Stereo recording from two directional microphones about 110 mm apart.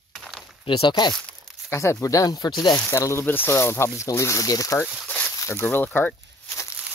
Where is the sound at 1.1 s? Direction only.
5° left (ahead or behind).